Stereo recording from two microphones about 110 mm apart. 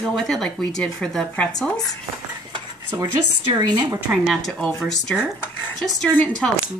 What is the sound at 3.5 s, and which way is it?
Speech, 35° right (ahead or behind).